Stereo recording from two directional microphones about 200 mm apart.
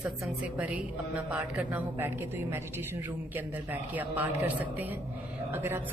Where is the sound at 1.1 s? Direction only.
5° right (ahead or behind).